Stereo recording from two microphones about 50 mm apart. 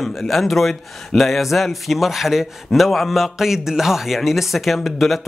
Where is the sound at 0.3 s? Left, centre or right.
Centre.